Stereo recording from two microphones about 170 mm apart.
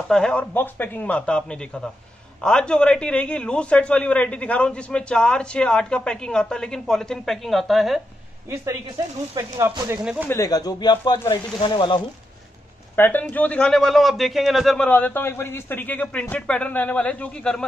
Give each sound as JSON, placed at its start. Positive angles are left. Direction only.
{"t": 0.1, "sound": "a man's voice", "side_deg": 5}
{"t": 8.5, "sound": "speech", "side_deg": -20}
{"t": 10.2, "sound": "speech", "side_deg": 20}
{"t": 12.9, "sound": "a man's voice", "side_deg": 10}